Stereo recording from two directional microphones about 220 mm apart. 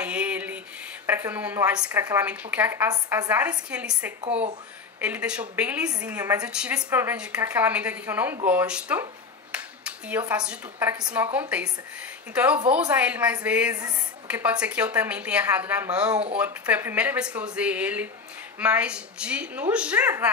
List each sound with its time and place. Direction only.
0.0 s a sound: 5° right (ahead or behind)
1.0 s a woman's voice: 10° right (ahead or behind)
4.2 s speech: 30° right (ahead or behind)
5.0 s a woman's voice: 5° right (ahead or behind)
12.6 s a woman's voice: 5° right (ahead or behind)